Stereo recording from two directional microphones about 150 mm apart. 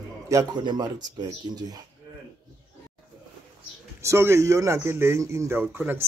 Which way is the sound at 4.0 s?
20° right (ahead or behind).